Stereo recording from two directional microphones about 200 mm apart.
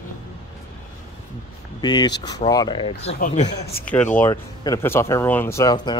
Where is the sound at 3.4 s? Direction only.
55° left (ahead or behind).